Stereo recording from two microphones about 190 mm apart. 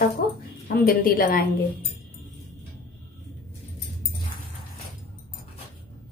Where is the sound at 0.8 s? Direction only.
50° left (ahead or behind).